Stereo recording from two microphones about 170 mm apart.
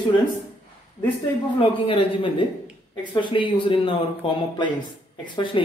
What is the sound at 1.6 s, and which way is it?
A man's voice, 30° left (ahead or behind).